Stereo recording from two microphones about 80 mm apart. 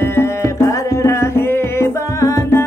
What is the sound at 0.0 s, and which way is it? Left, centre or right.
Music, left.